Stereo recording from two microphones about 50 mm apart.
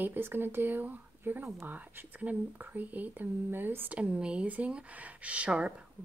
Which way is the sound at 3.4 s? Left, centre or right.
Right.